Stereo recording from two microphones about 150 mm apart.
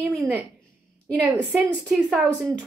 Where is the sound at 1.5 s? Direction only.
5° right (ahead or behind).